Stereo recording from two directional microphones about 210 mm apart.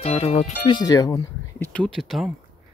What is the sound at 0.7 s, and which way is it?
Speech, 20° left (ahead or behind).